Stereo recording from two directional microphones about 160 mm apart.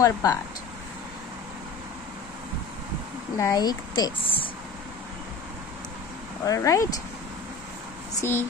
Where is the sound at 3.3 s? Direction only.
20° left (ahead or behind).